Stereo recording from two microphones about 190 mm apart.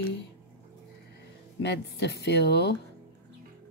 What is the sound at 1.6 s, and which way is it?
Speech, 65° left (ahead or behind).